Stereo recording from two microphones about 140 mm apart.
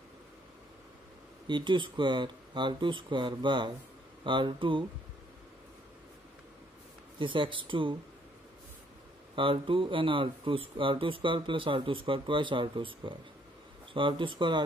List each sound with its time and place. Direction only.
1.5 s speech: 35° right (ahead or behind)
7.2 s speech: 35° right (ahead or behind)
9.3 s speech: 40° right (ahead or behind)